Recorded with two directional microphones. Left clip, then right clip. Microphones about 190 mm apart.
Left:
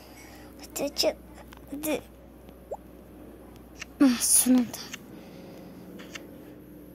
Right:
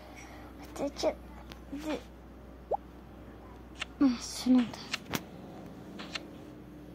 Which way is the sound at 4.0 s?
25° left (ahead or behind).